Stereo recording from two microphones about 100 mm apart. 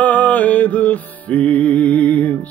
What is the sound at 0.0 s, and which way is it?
Music, 15° left (ahead or behind).